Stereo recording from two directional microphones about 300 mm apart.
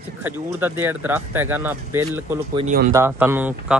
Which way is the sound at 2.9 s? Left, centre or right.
Centre.